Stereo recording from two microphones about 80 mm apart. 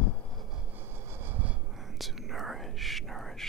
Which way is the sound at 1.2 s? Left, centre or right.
Centre.